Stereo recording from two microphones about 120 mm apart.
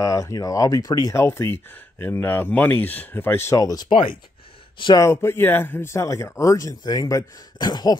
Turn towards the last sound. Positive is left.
turn(degrees=35)  # may be behind; listen again after turning